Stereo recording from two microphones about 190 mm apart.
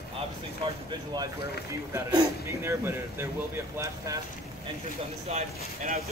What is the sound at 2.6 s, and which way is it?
Speech, 10° right (ahead or behind).